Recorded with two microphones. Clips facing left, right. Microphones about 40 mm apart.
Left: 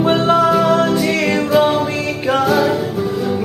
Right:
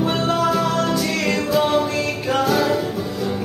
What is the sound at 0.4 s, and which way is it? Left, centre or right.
Music, centre.